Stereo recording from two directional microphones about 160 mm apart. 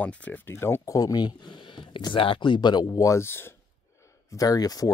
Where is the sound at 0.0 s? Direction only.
10° left (ahead or behind).